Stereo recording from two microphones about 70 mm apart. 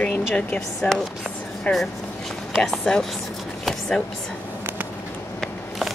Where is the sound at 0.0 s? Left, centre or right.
Centre.